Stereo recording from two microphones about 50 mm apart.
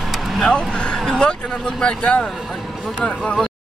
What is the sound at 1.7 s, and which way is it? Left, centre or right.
Speech, centre.